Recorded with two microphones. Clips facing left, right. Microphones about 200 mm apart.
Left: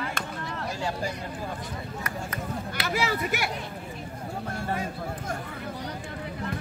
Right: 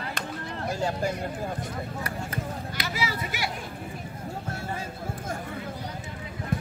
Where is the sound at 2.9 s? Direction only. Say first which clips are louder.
Left 6 dB; 50° left (ahead or behind).